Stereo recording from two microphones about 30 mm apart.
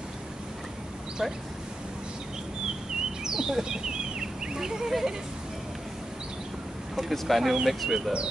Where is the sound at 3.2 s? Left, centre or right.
Centre.